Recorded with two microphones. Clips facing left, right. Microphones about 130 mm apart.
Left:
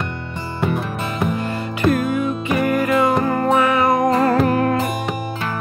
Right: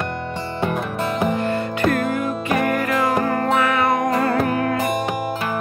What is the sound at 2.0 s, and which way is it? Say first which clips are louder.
Music: left 2 dB; centre (ahead or behind).